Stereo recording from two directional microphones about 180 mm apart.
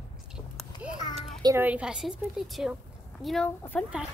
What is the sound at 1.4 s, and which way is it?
A woman's voice, 15° right (ahead or behind).